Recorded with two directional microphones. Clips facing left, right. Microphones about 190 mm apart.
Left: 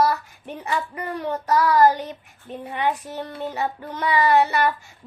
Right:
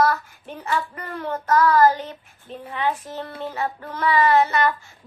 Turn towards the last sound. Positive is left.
turn(degrees=15)  # may be behind; listen again after turning